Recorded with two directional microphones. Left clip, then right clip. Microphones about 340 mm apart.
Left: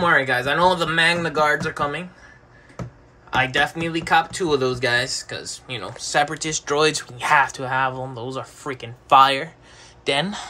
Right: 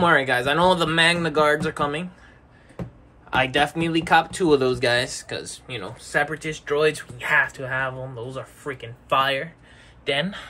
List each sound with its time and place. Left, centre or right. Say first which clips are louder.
0.0 s speech: left 1 dB; centre
3.3 s speech: left 1 dB; centre